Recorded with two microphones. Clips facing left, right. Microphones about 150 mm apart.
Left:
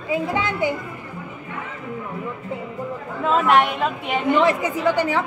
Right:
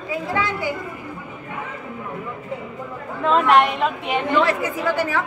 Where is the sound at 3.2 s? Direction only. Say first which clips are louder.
Right 1 dB; 5° left (ahead or behind).